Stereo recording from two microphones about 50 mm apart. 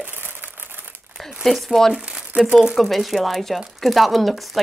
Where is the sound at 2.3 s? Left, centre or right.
Centre.